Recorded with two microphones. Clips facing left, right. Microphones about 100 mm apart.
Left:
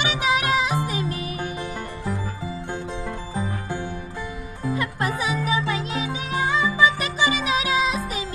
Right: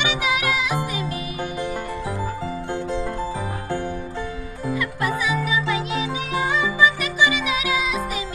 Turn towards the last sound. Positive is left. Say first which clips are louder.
# left 1 dB
turn(degrees=35)  # may be behind; listen again after turning